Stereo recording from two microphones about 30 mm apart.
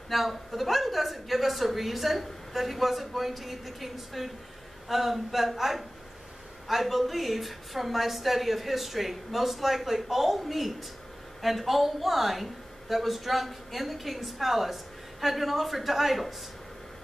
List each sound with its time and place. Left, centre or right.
0.1 s a woman's voice: centre